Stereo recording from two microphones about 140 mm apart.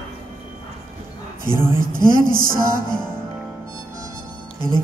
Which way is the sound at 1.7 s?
90° right.